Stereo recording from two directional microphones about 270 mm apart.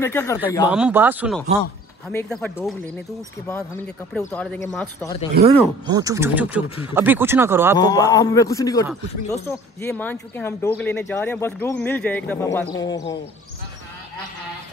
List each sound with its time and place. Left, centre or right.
0.0 s speech: centre
0.7 s speech: centre
5.4 s speech: centre
7.7 s speech: centre